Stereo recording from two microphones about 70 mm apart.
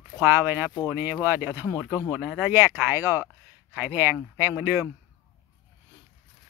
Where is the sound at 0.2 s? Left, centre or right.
Right.